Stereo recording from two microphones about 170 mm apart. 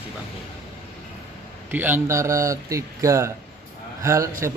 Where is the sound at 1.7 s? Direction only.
10° right (ahead or behind).